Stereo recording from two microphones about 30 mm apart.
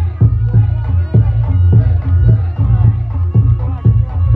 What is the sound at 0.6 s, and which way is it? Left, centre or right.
Music, centre.